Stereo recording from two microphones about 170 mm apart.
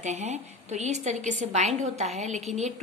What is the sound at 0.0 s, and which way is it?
A woman's voice, 40° right (ahead or behind).